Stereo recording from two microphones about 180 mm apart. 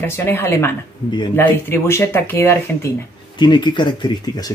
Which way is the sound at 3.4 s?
25° left (ahead or behind).